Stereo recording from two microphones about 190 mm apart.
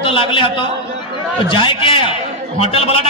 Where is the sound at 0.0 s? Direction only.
30° left (ahead or behind).